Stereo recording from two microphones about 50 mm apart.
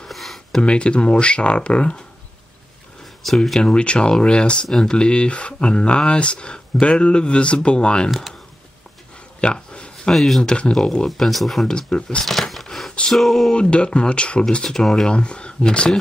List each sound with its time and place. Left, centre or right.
0.0 s a sound: centre
0.6 s speech: left
3.4 s speech: centre
4.6 s speech: centre
4.9 s speech: centre
8.1 s speech: centre
9.4 s a sound: left
10.1 s speech: centre
10.4 s speech: centre
11.7 s speech: centre
12.3 s speech: centre
13.5 s speech: left